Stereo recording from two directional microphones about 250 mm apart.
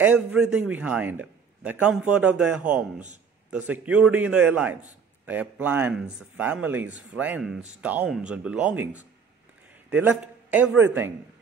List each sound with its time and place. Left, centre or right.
0.0 s a man's voice: centre